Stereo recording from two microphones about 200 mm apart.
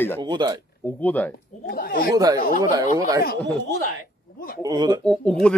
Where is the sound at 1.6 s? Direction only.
45° left (ahead or behind).